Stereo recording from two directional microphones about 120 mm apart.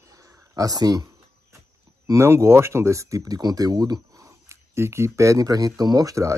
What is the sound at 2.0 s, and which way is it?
Speech, 25° right (ahead or behind).